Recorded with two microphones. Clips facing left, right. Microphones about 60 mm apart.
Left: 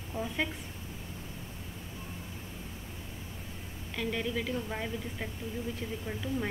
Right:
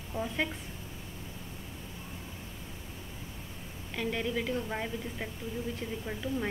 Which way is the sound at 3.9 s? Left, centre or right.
Centre.